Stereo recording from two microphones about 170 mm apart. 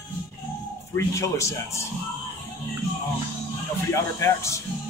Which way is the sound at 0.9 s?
20° left (ahead or behind).